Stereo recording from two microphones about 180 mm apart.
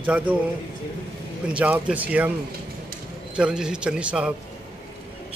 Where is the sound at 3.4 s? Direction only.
5° right (ahead or behind).